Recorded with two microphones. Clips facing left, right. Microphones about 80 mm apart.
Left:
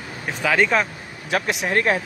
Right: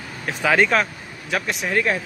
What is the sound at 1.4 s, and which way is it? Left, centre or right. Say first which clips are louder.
Speech: left 1 dB; centre.